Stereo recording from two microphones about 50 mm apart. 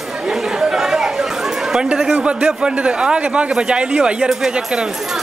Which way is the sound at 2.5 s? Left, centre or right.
Centre.